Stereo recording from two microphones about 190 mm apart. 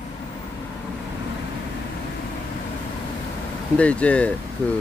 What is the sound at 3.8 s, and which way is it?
Speech, 5° left (ahead or behind).